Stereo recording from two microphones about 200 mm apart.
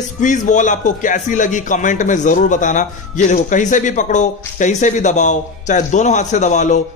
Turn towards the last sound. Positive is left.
turn(degrees=35)  # may be behind; listen again after turning